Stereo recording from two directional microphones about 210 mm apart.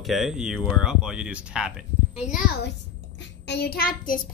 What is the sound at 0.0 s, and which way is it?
Speech, centre (ahead or behind).